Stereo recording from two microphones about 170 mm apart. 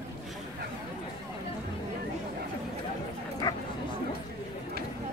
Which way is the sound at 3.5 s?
20° left (ahead or behind).